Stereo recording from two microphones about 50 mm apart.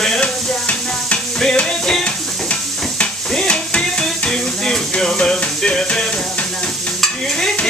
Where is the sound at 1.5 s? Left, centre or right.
Centre.